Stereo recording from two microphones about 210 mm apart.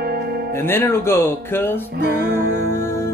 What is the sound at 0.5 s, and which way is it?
Speech, 10° left (ahead or behind).